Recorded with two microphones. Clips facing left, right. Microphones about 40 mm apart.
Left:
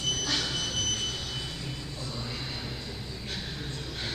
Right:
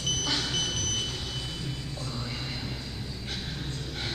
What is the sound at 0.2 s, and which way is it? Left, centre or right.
Smoke detector, centre.